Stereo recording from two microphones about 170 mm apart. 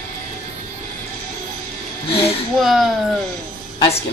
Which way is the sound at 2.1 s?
35° left (ahead or behind).